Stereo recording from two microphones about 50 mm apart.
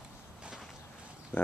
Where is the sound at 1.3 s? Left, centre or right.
Left.